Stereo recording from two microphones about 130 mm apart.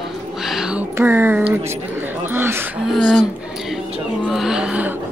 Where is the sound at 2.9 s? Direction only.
5° right (ahead or behind).